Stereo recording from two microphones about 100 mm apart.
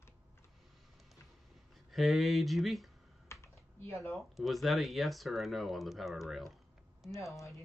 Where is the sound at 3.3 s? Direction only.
25° left (ahead or behind).